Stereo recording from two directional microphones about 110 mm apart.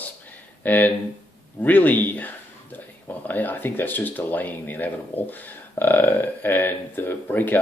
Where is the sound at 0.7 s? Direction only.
15° left (ahead or behind).